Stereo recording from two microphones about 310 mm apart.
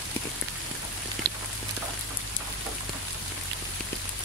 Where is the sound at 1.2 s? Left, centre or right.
Right.